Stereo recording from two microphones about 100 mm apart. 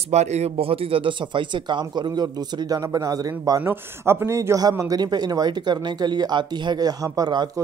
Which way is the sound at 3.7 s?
25° right (ahead or behind).